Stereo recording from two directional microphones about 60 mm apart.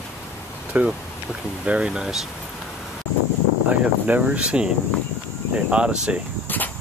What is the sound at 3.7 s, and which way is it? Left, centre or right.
Speech, right.